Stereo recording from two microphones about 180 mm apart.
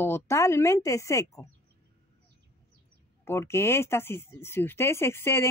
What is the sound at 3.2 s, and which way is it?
Speech, 15° left (ahead or behind).